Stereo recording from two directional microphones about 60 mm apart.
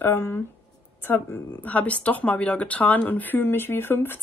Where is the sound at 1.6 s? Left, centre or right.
Left.